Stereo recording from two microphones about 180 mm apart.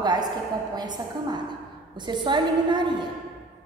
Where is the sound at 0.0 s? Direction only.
20° right (ahead or behind).